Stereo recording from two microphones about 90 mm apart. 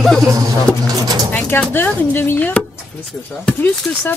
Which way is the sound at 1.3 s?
15° left (ahead or behind).